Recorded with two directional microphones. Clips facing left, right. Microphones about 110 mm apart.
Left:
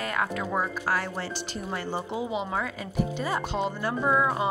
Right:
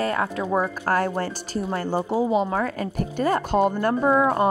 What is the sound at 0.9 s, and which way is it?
Speech, 45° right (ahead or behind).